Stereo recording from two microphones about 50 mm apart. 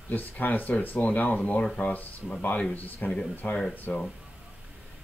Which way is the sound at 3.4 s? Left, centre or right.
Centre.